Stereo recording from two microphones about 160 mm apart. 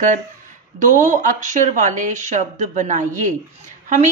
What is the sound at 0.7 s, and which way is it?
Speech, 50° right (ahead or behind).